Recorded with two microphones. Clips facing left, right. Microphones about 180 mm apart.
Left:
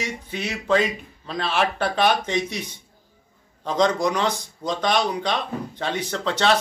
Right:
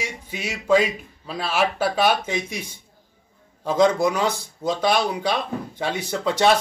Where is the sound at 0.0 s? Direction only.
10° right (ahead or behind).